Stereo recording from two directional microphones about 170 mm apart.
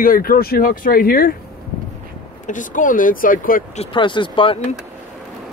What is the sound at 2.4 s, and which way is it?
Speech, 50° left (ahead or behind).